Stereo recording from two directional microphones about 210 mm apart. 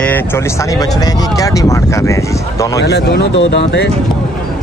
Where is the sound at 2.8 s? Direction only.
55° left (ahead or behind).